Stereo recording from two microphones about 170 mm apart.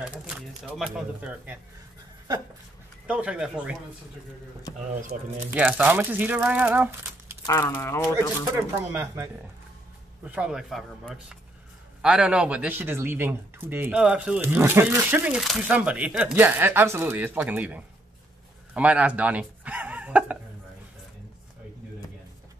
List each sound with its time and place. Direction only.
0.0 s speech: 5° right (ahead or behind)
3.1 s speech: 5° right (ahead or behind)
5.5 s speech: 10° right (ahead or behind)
7.4 s speech: 20° left (ahead or behind)
8.5 s speech: 15° right (ahead or behind)